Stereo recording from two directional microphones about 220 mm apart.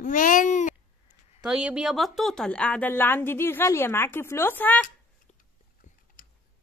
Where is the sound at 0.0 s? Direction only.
35° left (ahead or behind).